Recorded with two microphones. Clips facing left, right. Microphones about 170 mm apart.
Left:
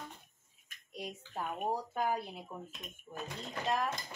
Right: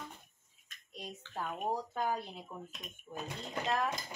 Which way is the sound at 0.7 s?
10° left (ahead or behind).